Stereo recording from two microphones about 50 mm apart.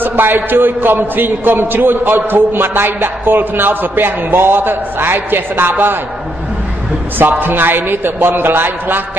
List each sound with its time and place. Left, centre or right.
0.0 s a man's voice: right
7.2 s a man's voice: right